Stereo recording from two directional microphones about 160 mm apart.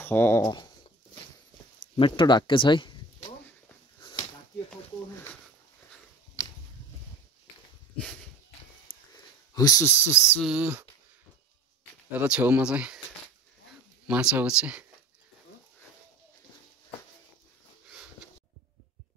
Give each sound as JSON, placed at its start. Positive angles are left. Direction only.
{"t": 0.0, "sound": "speech", "side_deg": 15}
{"t": 0.5, "sound": "speech", "side_deg": 25}
{"t": 2.0, "sound": "speech", "side_deg": 30}
{"t": 5.1, "sound": "a sound", "side_deg": 15}
{"t": 8.8, "sound": "a sound", "side_deg": 20}
{"t": 10.4, "sound": "speech", "side_deg": -5}
{"t": 12.1, "sound": "speech", "side_deg": -10}
{"t": 14.0, "sound": "speech", "side_deg": -10}